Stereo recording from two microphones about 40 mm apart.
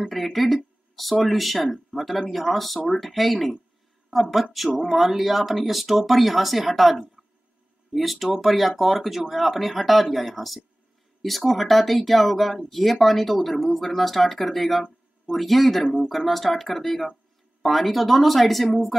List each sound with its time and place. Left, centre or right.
0.1 s speech: centre
4.6 s speech: centre